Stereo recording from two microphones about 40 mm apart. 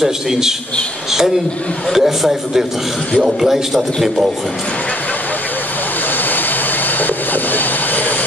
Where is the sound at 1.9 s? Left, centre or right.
Centre.